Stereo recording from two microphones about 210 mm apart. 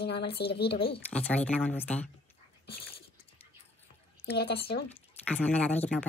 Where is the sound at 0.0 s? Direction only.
50° left (ahead or behind).